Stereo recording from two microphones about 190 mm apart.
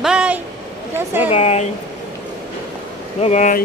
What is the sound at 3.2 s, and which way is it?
Speech, 40° left (ahead or behind).